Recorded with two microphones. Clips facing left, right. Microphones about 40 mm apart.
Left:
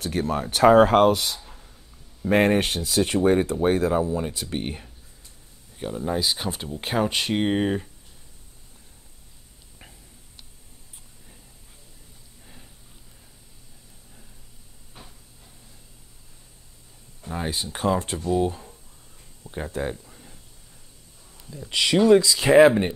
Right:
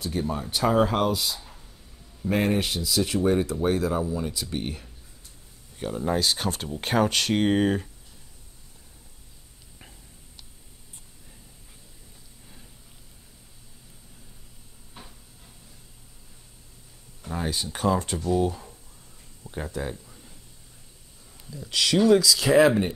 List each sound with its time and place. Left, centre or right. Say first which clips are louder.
0.0 s speech: left 3 dB; left
5.8 s speech: even; centre
17.3 s speech: left 1 dB; left
19.4 s a sound: left 2 dB; left
19.8 s speech: left 4 dB; centre
21.5 s speech: left 2 dB; left